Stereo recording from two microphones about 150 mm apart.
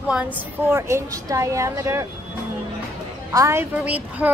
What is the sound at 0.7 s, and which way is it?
A woman's voice, 20° right (ahead or behind).